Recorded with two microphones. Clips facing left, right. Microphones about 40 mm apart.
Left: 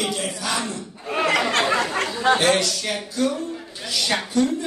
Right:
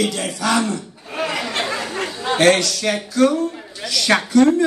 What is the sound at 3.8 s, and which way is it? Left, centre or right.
Speech, right.